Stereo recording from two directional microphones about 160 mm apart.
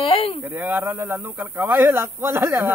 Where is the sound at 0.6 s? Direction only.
10° right (ahead or behind).